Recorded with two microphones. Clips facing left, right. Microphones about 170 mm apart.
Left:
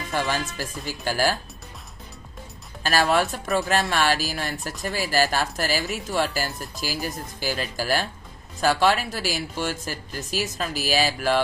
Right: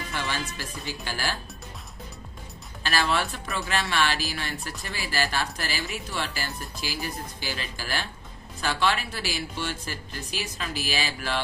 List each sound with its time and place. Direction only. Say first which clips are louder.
0.1 s speech: left 7 dB; 45° left (ahead or behind)
2.8 s speech: left 5 dB; 45° left (ahead or behind)